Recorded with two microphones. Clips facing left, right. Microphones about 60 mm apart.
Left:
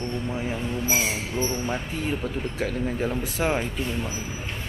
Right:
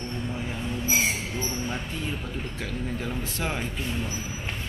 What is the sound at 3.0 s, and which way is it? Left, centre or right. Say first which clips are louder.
Speech: left 5 dB; centre.